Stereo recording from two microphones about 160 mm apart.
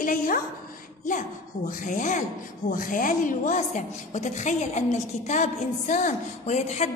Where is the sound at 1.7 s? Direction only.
55° left (ahead or behind).